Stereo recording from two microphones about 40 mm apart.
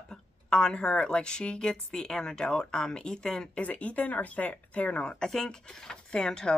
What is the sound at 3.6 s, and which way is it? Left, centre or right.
A woman's voice, left.